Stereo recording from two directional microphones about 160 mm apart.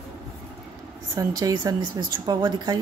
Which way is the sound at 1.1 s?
25° right (ahead or behind).